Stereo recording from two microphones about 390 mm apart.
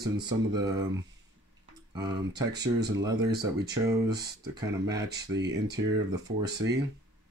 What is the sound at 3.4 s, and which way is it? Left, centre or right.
Speech, centre.